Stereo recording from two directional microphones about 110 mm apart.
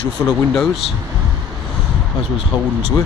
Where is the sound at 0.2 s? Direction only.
25° left (ahead or behind).